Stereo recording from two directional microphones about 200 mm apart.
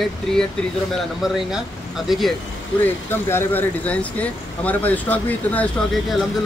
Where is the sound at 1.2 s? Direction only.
Centre (ahead or behind).